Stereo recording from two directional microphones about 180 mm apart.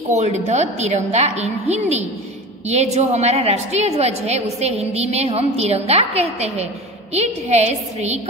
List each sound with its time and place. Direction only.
0.1 s a woman's voice: 40° right (ahead or behind)